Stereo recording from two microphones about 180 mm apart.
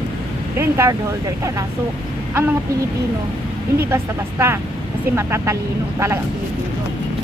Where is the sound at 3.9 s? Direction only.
15° right (ahead or behind).